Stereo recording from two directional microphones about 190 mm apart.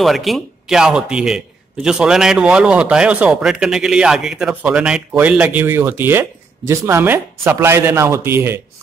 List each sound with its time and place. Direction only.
0.0 s a man's voice: centre (ahead or behind)